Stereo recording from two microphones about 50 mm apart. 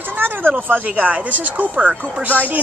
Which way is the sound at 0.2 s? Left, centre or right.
Right.